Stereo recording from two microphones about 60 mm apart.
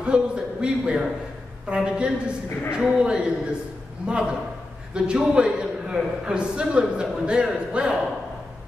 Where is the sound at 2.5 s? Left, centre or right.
Left.